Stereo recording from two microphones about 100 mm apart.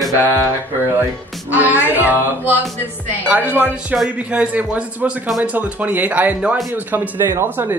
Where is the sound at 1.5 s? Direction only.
15° right (ahead or behind).